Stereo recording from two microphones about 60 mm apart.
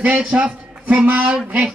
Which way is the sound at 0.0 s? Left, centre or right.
Centre.